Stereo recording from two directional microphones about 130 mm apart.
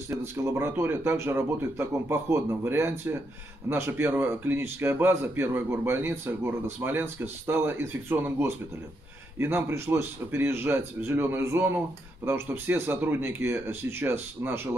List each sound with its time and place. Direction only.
0.4 s a man's voice: 20° right (ahead or behind)